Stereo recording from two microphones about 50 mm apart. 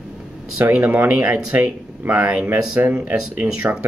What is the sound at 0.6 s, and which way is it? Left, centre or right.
Speech, right.